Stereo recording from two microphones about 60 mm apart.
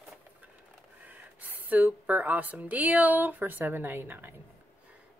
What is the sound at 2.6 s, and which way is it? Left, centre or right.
Speech, right.